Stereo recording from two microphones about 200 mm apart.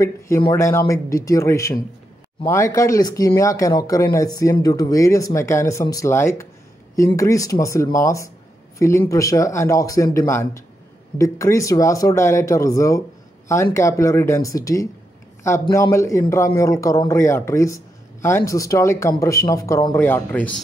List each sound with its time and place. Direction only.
0.4 s speech: 15° left (ahead or behind)